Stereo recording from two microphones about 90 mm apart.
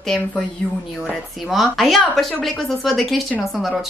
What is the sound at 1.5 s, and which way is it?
Speech, centre (ahead or behind).